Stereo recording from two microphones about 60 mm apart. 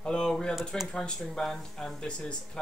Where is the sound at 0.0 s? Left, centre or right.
Centre.